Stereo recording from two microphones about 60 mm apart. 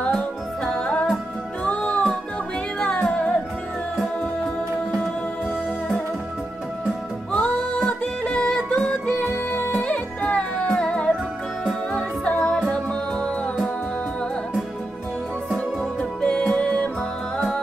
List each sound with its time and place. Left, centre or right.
0.7 s music: left
7.3 s music: left
15.8 s music: centre